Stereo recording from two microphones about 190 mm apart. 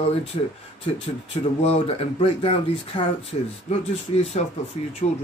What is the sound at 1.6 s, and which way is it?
Speech, 30° left (ahead or behind).